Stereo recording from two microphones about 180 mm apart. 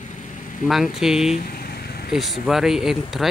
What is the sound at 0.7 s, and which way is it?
Speech, centre (ahead or behind).